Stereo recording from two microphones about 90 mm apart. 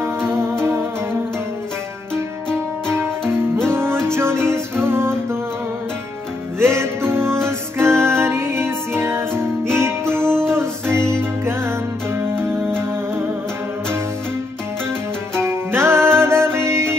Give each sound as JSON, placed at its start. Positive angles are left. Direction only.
{"t": 0.0, "sound": "music", "side_deg": -30}
{"t": 3.9, "sound": "music", "side_deg": -25}
{"t": 6.6, "sound": "music", "side_deg": -30}
{"t": 15.4, "sound": "music", "side_deg": -30}